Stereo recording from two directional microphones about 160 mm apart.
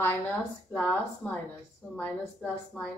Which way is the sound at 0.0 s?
10° left (ahead or behind).